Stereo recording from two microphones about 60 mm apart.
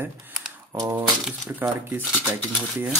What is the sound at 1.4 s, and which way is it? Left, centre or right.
Speech, right.